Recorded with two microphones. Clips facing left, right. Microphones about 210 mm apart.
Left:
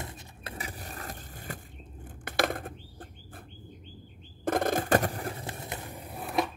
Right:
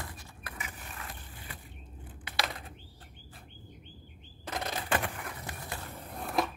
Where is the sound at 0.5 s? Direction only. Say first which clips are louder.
Left 5 dB; 35° left (ahead or behind); by 3.4 s 50° left (ahead or behind).